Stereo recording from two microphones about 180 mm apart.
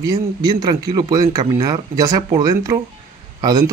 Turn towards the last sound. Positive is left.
turn(degrees=-20)  # may be behind; listen again after turning